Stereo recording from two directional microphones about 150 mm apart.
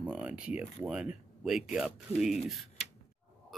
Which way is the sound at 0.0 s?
10° right (ahead or behind).